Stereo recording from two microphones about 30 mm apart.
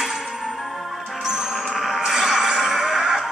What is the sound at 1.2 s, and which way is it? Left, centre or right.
Music, centre.